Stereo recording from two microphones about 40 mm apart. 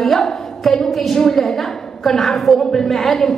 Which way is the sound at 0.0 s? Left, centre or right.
Centre.